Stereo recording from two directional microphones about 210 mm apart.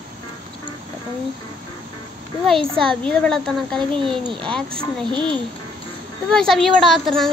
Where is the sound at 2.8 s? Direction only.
5° left (ahead or behind).